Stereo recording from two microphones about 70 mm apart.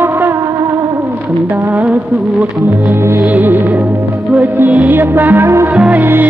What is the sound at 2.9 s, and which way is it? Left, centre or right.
Music, right.